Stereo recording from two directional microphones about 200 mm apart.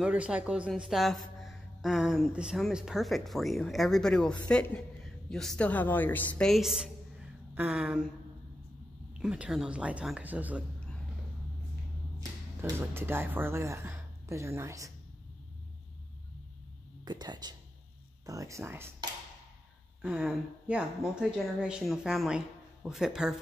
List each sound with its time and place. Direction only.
0.0 s a man's voice: 5° right (ahead or behind)
9.2 s a man's voice: 5° right (ahead or behind)
12.6 s speech: 10° right (ahead or behind)
17.0 s a man's voice: 20° right (ahead or behind); by 23.3 s 5° right (ahead or behind)